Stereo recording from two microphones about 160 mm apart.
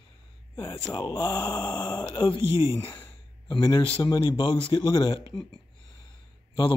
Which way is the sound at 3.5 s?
30° left (ahead or behind).